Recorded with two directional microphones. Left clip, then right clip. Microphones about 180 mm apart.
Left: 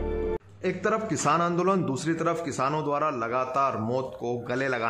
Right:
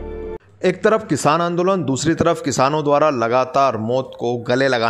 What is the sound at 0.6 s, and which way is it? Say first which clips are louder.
A man's voice: right 12 dB; 35° right (ahead or behind).